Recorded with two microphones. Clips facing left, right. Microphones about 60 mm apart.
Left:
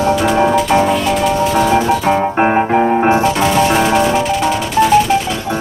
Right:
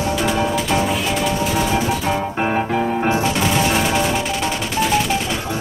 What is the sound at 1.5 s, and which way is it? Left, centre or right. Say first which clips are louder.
Music: left 7 dB; left.